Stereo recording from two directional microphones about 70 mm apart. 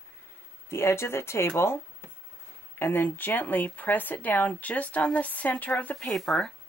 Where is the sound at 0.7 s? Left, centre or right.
Left.